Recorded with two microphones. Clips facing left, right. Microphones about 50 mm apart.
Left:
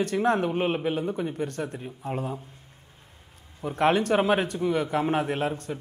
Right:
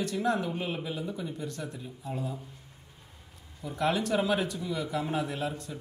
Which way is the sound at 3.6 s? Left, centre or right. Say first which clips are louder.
Left 6 dB; left.